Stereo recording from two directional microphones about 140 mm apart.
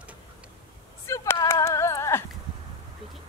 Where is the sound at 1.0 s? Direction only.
20° left (ahead or behind).